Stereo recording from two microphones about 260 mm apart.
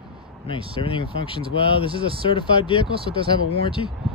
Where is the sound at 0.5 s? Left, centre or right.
Centre.